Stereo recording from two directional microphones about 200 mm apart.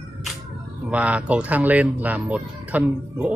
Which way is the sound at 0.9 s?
5° right (ahead or behind).